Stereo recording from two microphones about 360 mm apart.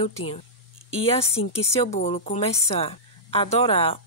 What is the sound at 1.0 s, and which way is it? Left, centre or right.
A woman's voice, centre.